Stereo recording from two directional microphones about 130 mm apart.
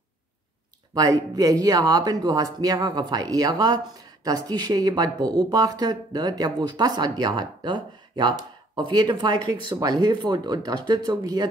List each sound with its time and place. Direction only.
0.9 s speech: 25° right (ahead or behind)